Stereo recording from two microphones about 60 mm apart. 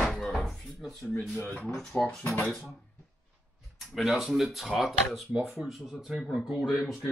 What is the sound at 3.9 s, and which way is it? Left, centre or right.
Speech, centre.